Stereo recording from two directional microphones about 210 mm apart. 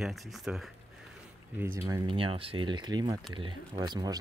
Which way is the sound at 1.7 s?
15° right (ahead or behind).